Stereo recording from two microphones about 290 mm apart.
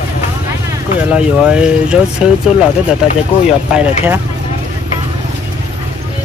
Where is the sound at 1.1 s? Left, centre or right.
Centre.